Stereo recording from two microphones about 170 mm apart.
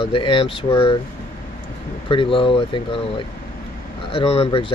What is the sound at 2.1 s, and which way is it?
Speech, 30° left (ahead or behind).